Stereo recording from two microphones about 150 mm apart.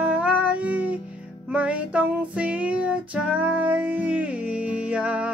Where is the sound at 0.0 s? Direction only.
10° right (ahead or behind).